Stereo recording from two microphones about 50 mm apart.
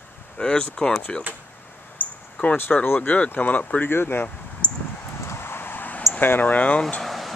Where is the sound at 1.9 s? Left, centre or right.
Left.